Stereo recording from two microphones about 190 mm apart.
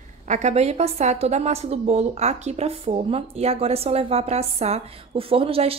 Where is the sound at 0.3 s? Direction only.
35° right (ahead or behind).